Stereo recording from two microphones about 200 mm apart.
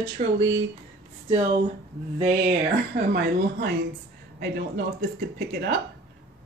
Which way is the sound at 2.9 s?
55° right (ahead or behind).